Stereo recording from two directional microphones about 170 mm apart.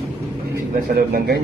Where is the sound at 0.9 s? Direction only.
65° right (ahead or behind).